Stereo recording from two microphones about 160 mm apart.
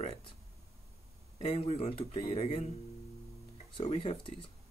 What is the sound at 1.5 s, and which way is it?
Speech, 40° left (ahead or behind).